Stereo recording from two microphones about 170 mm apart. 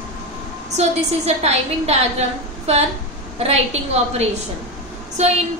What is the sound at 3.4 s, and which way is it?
A woman's voice, 40° right (ahead or behind).